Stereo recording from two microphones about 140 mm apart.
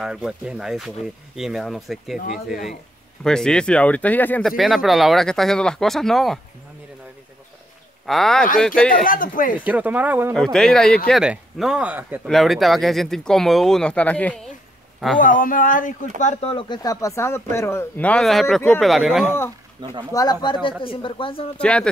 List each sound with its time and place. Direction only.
0.0 s speech: 5° right (ahead or behind)
3.3 s speech: 5° left (ahead or behind)
4.5 s speech: centre (ahead or behind)
8.1 s speech: 5° left (ahead or behind)
9.0 s speech: 85° left
9.7 s speech: 10° right (ahead or behind)
10.3 s speech: 5° left (ahead or behind)
12.3 s speech: centre (ahead or behind)
15.1 s speech: 75° left (ahead or behind)
16.2 s speech: 60° left (ahead or behind)
16.4 s speech: 35° left (ahead or behind); by 19.3 s centre (ahead or behind)
19.8 s speech: 30° right (ahead or behind)
20.1 s speech: 25° left (ahead or behind)
21.5 s speech: 10° left (ahead or behind)